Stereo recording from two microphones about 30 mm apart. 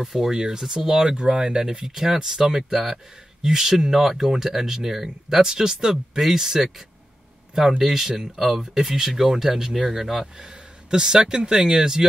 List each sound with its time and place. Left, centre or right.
0.0 s speech: centre
5.4 s speech: right
7.8 s speech: centre
10.9 s speech: right